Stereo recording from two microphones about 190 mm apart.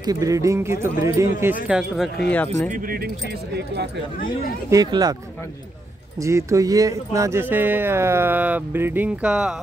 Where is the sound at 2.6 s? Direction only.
45° right (ahead or behind).